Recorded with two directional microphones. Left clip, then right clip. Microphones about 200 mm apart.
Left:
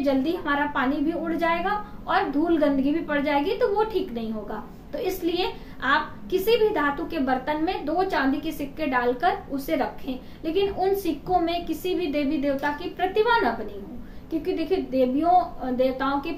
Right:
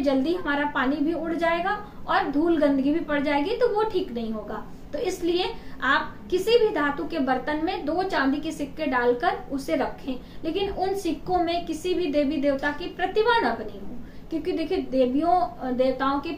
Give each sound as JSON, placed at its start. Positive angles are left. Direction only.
{"t": 0.0, "sound": "a woman's voice", "side_deg": 5}